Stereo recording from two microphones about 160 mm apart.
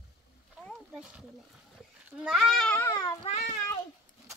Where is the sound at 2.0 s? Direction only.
5° right (ahead or behind).